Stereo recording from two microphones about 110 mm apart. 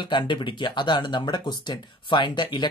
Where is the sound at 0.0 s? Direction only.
45° left (ahead or behind).